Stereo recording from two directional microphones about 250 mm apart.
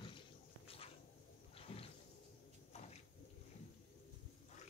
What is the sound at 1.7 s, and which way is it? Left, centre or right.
Roaring cats, left.